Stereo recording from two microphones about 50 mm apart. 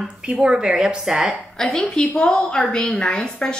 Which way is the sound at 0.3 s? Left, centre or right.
Right.